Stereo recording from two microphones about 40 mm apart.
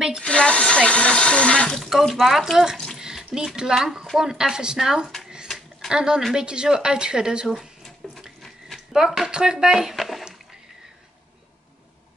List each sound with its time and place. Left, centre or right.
0.2 s speech: left
2.1 s speech: centre
3.0 s a sound: centre
3.7 s speech: centre
8.0 s water: centre
8.4 s a sound: centre
8.9 s speech: centre
9.3 s speech: centre
9.9 s a sound: centre